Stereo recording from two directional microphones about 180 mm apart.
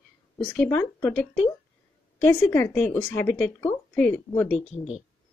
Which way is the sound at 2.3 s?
10° left (ahead or behind).